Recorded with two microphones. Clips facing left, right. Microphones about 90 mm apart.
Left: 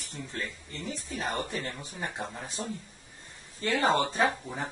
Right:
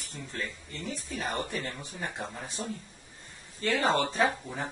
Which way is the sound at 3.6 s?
Centre (ahead or behind).